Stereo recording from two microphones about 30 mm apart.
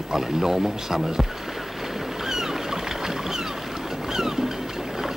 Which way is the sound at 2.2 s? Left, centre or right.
Centre.